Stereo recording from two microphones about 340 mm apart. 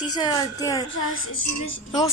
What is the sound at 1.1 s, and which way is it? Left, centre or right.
Speech, left.